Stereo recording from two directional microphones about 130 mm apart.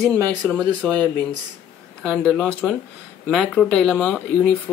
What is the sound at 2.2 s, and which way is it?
Speech, 5° left (ahead or behind).